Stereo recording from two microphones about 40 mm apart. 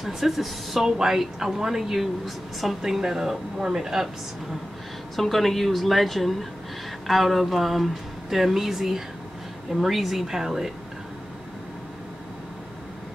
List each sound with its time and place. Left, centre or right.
0.0 s a woman's voice: centre
5.1 s speech: centre